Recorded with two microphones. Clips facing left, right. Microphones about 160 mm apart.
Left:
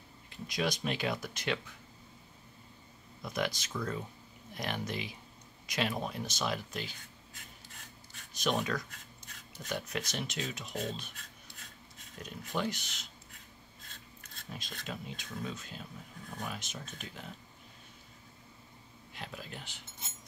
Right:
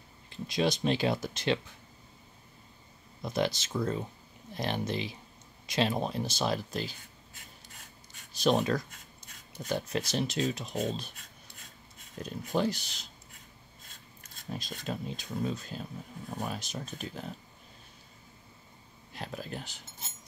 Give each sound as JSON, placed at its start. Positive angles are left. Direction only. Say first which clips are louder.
{"t": 0.3, "sound": "speech", "louder": "right 5 dB", "side_deg": -30}
{"t": 3.2, "sound": "speech", "louder": "right 5 dB", "side_deg": -30}
{"t": 8.4, "sound": "speech", "louder": "right 6 dB", "side_deg": -35}
{"t": 12.2, "sound": "speech", "louder": "right 6 dB", "side_deg": -35}
{"t": 14.5, "sound": "speech", "louder": "right 6 dB", "side_deg": -35}
{"t": 19.1, "sound": "speech", "louder": "right 6 dB", "side_deg": -40}